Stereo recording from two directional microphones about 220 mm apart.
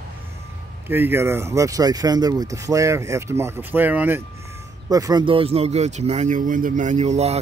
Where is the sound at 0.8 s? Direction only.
10° right (ahead or behind).